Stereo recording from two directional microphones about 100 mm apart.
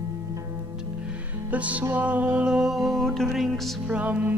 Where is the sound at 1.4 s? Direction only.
15° right (ahead or behind).